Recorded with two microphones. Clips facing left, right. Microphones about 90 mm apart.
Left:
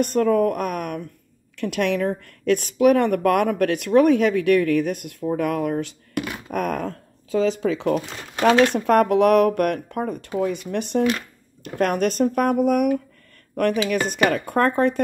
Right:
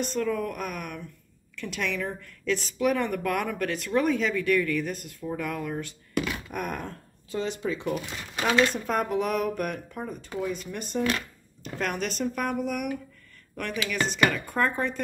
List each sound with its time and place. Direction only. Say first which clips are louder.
0.0 s speech: left 10 dB; 55° left (ahead or behind); by 5.9 s 80° left
6.5 s a sound: left 8 dB; 90° left
8.4 s speech: left 7 dB; 70° left (ahead or behind)
10.7 s speech: left 8 dB; 80° left
11.6 s speech: left 9 dB; 55° left (ahead or behind)